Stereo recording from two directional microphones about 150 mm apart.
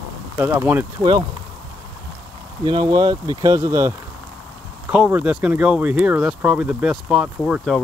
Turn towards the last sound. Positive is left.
turn(degrees=0)  # may be behind; listen again after turning